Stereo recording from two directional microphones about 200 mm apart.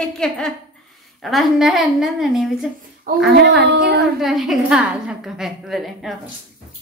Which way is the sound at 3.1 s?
45° right (ahead or behind).